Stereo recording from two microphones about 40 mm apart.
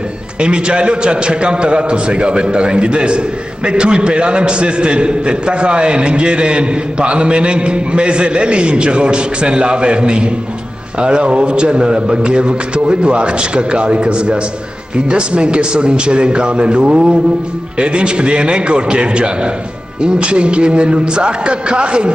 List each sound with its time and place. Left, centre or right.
0.4 s a man's voice: right